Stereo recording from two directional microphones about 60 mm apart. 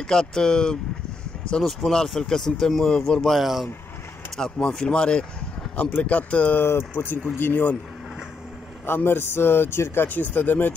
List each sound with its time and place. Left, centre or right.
0.0 s speech: centre
3.3 s speech: centre
4.4 s speech: centre
7.0 s speech: left
8.8 s speech: left